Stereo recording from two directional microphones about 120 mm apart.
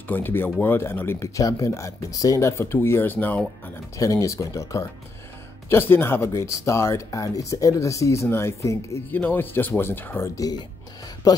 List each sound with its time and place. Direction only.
0.1 s speech: 15° left (ahead or behind)
4.0 s speech: 25° left (ahead or behind)